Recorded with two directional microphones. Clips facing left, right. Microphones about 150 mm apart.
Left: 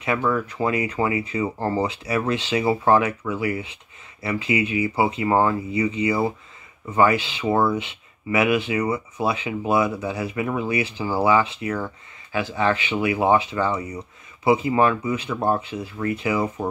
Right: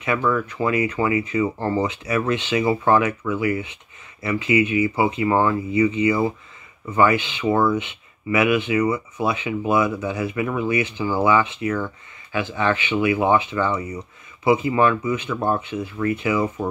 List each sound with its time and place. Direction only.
0.0 s speech: 30° left (ahead or behind)